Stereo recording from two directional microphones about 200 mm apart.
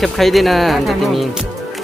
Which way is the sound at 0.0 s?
Centre (ahead or behind).